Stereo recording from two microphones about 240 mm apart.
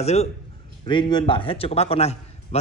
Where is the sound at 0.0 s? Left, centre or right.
Left.